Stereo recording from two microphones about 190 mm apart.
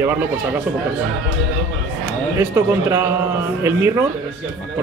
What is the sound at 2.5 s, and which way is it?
Speech, 10° right (ahead or behind).